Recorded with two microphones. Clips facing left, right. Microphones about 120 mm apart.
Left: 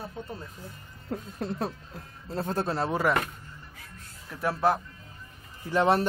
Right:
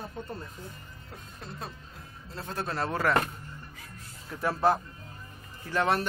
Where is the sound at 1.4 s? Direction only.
55° left (ahead or behind).